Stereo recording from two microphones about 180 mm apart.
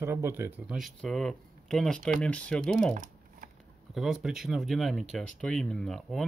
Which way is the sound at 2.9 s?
45° right (ahead or behind).